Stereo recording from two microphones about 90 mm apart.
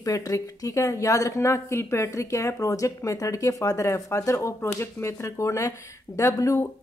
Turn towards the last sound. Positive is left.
turn(degrees=35)  # may be behind; listen again after turning